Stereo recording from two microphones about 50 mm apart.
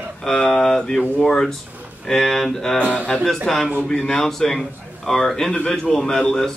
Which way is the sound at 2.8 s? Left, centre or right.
Right.